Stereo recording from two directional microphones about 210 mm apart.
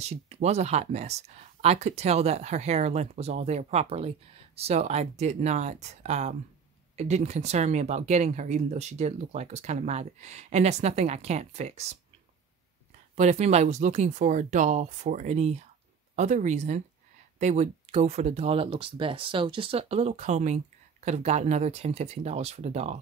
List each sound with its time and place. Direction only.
0.0 s speech: 30° right (ahead or behind)
13.1 s speech: 30° right (ahead or behind)